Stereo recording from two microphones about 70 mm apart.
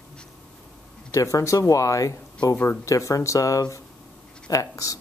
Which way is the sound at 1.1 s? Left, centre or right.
Left.